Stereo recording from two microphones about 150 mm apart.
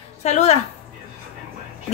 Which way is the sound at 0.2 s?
50° left (ahead or behind).